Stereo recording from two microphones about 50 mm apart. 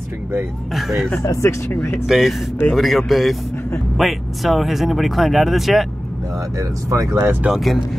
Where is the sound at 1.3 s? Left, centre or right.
Left.